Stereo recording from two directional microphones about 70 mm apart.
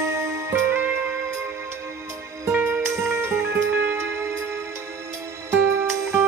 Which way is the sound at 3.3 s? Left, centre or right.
Right.